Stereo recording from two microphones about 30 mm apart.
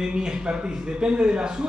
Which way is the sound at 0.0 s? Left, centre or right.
Right.